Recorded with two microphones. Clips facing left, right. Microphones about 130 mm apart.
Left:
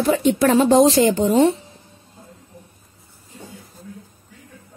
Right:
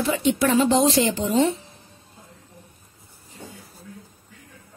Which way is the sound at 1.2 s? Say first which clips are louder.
Left 5 dB; 35° left (ahead or behind).